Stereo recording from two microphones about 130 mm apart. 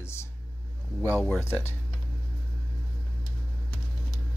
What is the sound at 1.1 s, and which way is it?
Speech, 10° left (ahead or behind).